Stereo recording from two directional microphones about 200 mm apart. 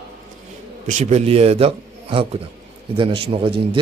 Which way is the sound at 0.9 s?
35° right (ahead or behind).